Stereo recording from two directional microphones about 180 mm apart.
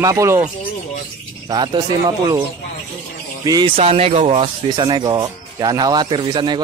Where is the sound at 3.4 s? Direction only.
25° right (ahead or behind).